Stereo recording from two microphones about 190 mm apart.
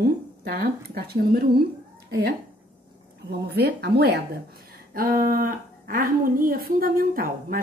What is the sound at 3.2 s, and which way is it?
Speech, 60° right (ahead or behind).